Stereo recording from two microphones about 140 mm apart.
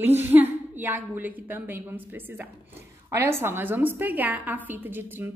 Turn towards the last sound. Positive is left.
turn(degrees=-15)  # may be behind; listen again after turning